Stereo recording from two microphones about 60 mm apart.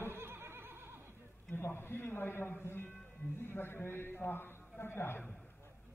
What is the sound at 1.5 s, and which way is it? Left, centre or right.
A man's voice, left.